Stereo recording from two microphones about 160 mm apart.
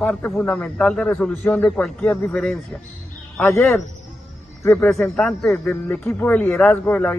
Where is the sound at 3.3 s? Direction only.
15° left (ahead or behind).